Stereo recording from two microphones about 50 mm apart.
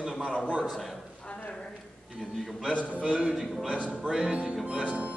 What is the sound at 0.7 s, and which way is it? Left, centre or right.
Speech, centre.